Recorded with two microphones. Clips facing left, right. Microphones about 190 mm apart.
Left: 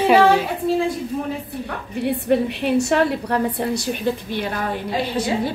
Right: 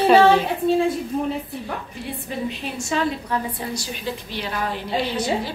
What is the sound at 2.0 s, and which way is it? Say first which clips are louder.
A woman's voice: left 11 dB; 65° left (ahead or behind).